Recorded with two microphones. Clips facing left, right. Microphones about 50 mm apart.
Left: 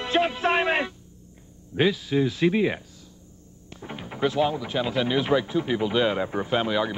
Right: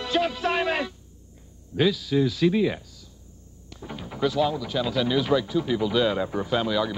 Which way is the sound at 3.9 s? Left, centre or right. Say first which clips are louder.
Even; left.